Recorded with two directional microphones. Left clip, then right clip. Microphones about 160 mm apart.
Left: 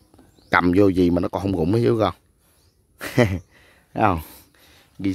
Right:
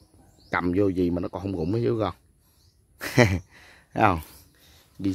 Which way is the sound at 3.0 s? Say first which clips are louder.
Left 1 dB; 10° left (ahead or behind).